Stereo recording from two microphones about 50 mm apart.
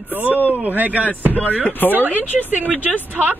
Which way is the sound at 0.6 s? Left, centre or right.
Right.